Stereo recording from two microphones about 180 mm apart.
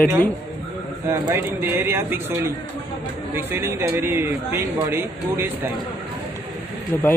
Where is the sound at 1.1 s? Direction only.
15° right (ahead or behind).